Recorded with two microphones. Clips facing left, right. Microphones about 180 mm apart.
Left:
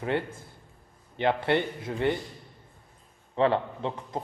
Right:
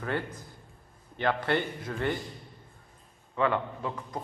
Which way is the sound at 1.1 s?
20° left (ahead or behind).